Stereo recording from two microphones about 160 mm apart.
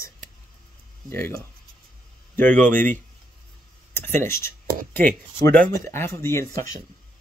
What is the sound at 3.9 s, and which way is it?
Speech, 15° left (ahead or behind).